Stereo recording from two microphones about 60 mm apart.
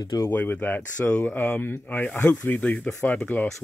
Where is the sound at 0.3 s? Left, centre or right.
Left.